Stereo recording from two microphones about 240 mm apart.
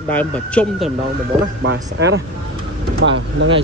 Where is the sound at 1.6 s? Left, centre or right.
Right.